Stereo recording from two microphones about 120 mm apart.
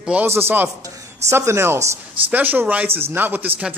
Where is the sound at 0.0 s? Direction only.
10° right (ahead or behind).